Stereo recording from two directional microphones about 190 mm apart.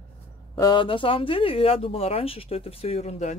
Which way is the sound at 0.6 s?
25° left (ahead or behind).